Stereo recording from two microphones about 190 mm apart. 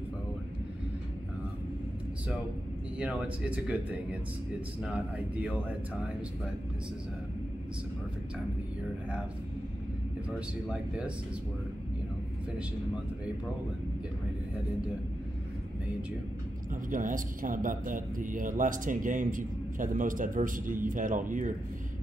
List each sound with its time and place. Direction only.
3.0 s speech: 5° right (ahead or behind)
10.7 s speech: 5° right (ahead or behind)
16.9 s speech: 45° right (ahead or behind)